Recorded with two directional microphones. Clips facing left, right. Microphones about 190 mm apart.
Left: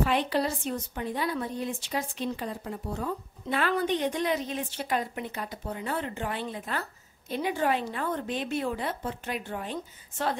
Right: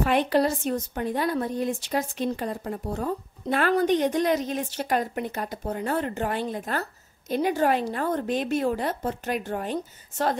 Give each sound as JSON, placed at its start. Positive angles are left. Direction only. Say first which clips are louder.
{"t": 0.0, "sound": "a woman's voice", "louder": "right 5 dB", "side_deg": -50}